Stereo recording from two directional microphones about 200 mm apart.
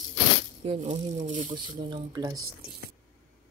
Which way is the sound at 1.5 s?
25° right (ahead or behind).